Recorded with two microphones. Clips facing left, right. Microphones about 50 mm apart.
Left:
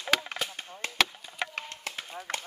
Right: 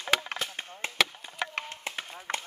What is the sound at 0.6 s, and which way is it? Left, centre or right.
Chop, right.